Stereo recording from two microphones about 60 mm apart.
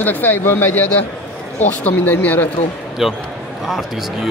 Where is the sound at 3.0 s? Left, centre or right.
Centre.